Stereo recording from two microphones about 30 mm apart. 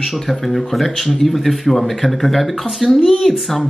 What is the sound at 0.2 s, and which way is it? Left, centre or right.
Speech, centre.